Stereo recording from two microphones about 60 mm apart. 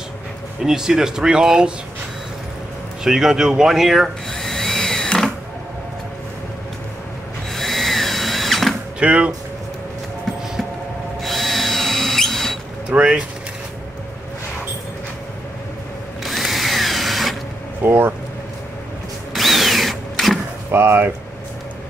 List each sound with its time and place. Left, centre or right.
0.7 s speech: centre
3.0 s speech: centre
4.3 s vacuum cleaner: centre
7.5 s drill: centre
9.0 s speech: centre
11.2 s drill: centre
12.9 s speech: centre
16.3 s drill: centre
17.8 s speech: right
19.3 s drill: centre
20.7 s speech: right